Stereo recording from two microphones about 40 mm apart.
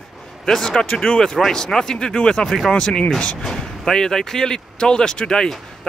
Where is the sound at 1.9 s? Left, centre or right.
Left.